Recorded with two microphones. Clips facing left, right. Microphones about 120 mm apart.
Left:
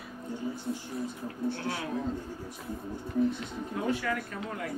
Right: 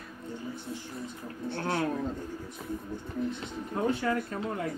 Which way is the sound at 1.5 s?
50° right (ahead or behind).